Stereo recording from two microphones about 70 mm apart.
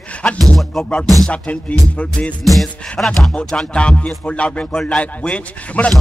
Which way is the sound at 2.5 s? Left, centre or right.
Centre.